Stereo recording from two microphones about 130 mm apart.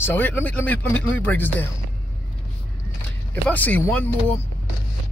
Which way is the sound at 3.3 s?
15° left (ahead or behind).